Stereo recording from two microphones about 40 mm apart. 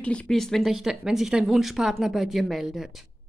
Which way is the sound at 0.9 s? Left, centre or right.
Centre.